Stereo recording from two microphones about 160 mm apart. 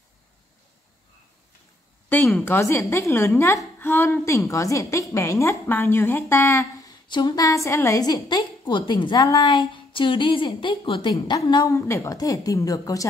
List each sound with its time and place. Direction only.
2.4 s a woman's voice: 15° left (ahead or behind)